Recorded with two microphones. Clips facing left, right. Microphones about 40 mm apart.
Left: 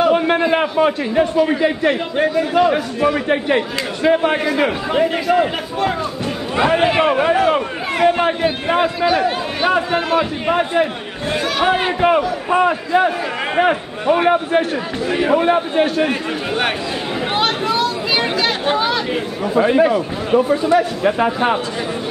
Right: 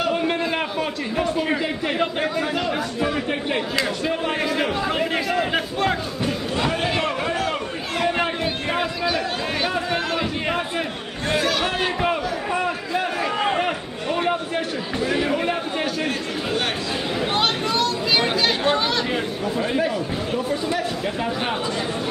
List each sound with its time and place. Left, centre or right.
0.4 s a sound: left
2.5 s a man's voice: left
4.8 s a man's voice: centre
6.7 s a man's voice: left
8.0 s a man's voice: centre
11.2 s a man's voice: centre
11.6 s a man's voice: left
12.1 s a sound: left
13.6 s a man's voice: left
17.4 s chatter: centre
19.5 s a man's voice: left